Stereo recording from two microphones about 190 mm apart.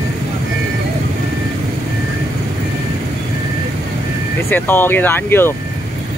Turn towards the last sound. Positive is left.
turn(degrees=10)  # may be behind; listen again after turning